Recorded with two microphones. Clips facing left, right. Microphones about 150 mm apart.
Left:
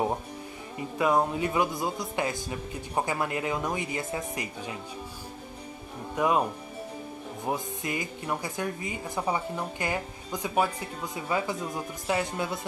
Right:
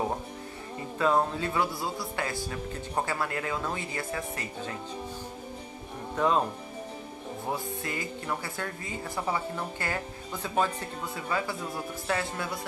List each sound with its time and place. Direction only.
0.9 s a woman's voice: 15° left (ahead or behind)
6.1 s speech: 10° left (ahead or behind)
7.4 s a woman's voice: 15° left (ahead or behind)